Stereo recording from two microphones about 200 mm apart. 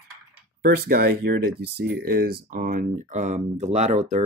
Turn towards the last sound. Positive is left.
turn(degrees=-35)  # may be behind; listen again after turning